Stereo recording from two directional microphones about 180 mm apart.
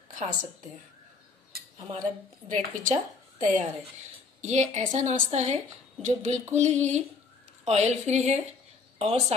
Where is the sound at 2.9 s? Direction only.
40° right (ahead or behind).